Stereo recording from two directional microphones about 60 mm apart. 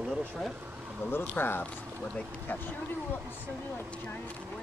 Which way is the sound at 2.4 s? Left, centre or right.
Left.